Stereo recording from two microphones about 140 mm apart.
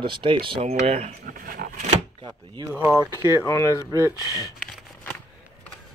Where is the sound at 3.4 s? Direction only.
20° left (ahead or behind).